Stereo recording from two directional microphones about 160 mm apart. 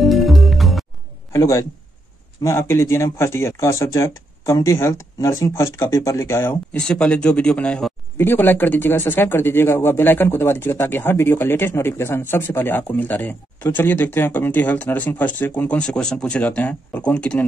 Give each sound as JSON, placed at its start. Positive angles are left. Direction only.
{"t": 0.0, "sound": "music", "side_deg": 0}
{"t": 1.3, "sound": "a man's voice", "side_deg": 20}